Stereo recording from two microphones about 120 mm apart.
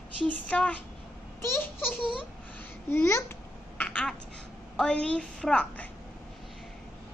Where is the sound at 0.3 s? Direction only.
10° left (ahead or behind).